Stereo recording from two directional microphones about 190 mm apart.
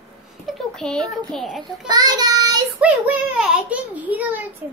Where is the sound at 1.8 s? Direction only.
20° right (ahead or behind).